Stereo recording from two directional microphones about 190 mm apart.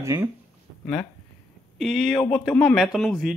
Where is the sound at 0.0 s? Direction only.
15° right (ahead or behind).